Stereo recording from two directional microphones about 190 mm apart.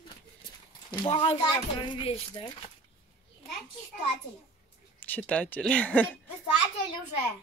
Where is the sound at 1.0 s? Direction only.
25° left (ahead or behind).